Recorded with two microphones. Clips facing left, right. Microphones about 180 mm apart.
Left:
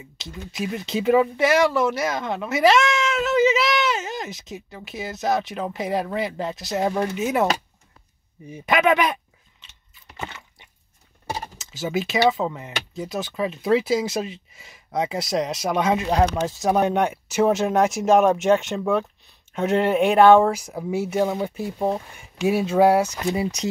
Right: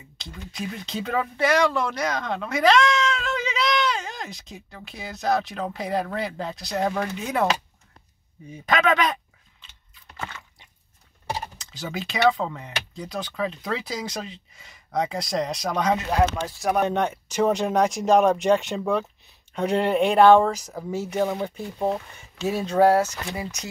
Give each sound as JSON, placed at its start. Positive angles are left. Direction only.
{"t": 0.2, "sound": "speech", "side_deg": 5}
{"t": 8.5, "sound": "speech", "side_deg": 10}
{"t": 10.1, "sound": "a sound", "side_deg": 20}
{"t": 11.5, "sound": "speech", "side_deg": 5}
{"t": 16.1, "sound": "speech", "side_deg": 25}
{"t": 16.8, "sound": "speech", "side_deg": 10}